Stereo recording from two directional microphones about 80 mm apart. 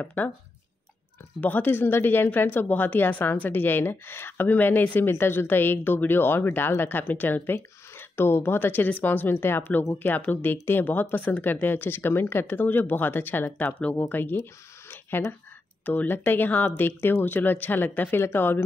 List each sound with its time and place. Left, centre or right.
0.0 s a woman's voice: left
1.4 s a woman's voice: left